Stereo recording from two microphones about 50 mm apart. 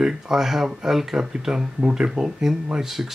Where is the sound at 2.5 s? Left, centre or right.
Centre.